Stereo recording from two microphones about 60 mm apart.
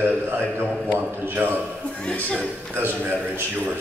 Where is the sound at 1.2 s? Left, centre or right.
Right.